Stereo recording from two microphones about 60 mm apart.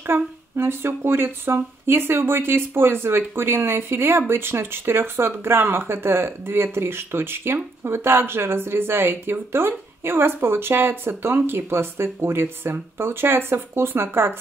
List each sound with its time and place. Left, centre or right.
0.0 s speech: right